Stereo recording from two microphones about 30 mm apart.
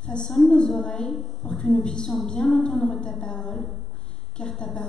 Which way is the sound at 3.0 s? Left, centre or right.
Left.